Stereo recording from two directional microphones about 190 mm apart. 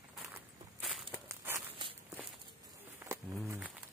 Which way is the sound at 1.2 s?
15° right (ahead or behind).